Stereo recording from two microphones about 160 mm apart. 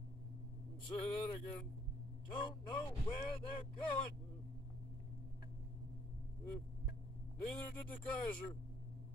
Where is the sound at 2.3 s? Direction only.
30° left (ahead or behind).